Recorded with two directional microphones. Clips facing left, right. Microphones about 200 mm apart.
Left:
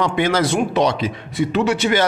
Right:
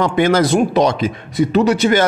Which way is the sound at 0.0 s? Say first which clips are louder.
Right 4 dB; 45° right (ahead or behind).